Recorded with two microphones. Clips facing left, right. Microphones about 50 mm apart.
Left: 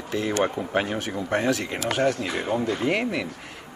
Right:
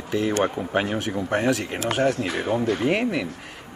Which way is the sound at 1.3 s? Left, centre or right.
Right.